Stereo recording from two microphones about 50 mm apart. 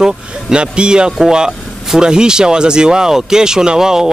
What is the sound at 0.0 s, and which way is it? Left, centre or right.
Speech, centre.